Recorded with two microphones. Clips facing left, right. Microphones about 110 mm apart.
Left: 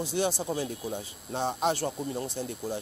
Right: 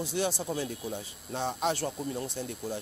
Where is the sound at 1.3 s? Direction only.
30° left (ahead or behind).